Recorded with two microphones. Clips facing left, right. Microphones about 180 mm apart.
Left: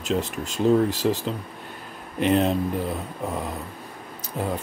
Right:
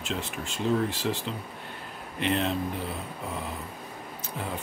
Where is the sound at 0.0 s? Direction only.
40° left (ahead or behind).